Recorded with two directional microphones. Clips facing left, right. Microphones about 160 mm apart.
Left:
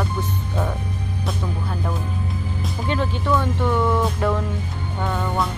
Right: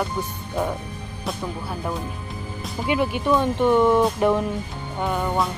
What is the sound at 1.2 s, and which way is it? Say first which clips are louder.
Music: right 1 dB; centre (ahead or behind).